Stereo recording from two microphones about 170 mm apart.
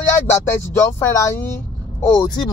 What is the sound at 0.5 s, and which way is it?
Speech, 15° left (ahead or behind).